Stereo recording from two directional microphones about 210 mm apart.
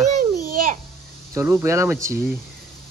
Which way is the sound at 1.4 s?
10° right (ahead or behind).